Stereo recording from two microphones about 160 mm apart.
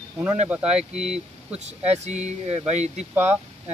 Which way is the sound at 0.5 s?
5° right (ahead or behind).